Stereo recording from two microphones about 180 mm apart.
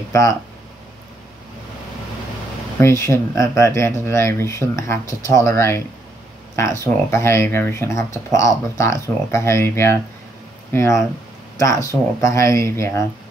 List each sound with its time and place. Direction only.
0.1 s speech: 15° left (ahead or behind)
2.8 s speech: 15° left (ahead or behind)